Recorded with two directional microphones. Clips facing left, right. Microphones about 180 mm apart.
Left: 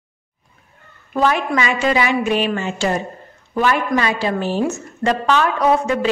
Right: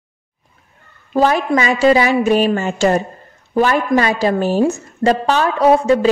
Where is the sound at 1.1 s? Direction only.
35° right (ahead or behind).